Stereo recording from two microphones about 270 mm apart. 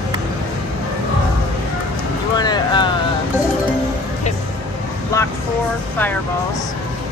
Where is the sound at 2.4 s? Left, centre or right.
Centre.